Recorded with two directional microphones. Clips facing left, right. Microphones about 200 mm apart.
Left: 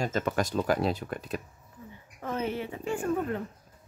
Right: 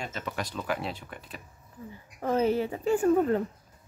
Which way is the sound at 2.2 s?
35° right (ahead or behind).